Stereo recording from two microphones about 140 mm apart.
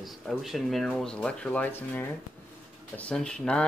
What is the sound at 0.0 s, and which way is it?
Speech, centre (ahead or behind).